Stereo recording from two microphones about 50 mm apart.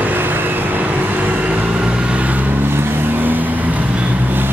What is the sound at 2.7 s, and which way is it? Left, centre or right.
Vehicle, right.